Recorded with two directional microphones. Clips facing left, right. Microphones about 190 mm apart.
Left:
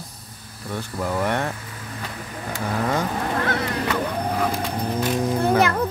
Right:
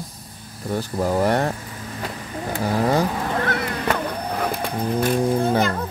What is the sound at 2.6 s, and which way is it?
Speech, 35° right (ahead or behind).